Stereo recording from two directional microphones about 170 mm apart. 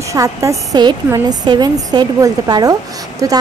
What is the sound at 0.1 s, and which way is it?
A woman's voice, 20° right (ahead or behind).